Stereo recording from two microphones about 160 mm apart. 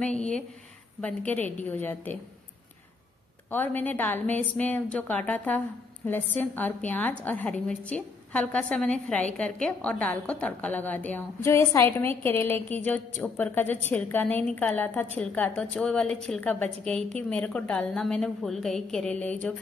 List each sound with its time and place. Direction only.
0.0 s a woman's voice: 5° left (ahead or behind)
3.4 s a woman's voice: 10° left (ahead or behind)